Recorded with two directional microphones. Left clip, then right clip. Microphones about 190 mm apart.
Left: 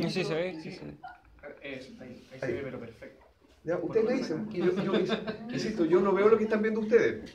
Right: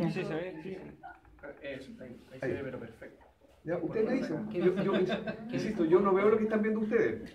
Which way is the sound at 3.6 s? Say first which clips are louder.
Left 4 dB; 20° left (ahead or behind).